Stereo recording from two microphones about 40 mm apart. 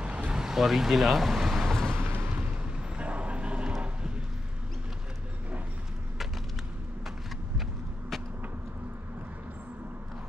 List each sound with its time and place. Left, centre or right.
0.0 s vehicle: right
0.3 s vehicle: centre
0.6 s speech: centre
1.6 s vehicle: centre
2.6 s a sound: right